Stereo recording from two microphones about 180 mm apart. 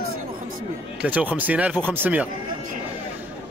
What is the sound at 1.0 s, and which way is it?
Speech, 10° right (ahead or behind).